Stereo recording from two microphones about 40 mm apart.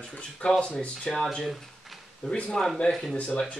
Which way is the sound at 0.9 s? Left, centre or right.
Centre.